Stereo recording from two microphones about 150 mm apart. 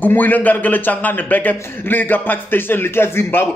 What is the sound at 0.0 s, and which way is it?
Speech, 10° left (ahead or behind).